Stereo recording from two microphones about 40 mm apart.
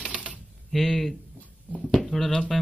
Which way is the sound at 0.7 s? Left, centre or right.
Centre.